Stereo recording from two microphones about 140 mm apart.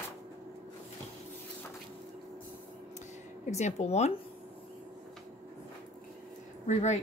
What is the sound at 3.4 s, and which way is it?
Speech, 55° left (ahead or behind).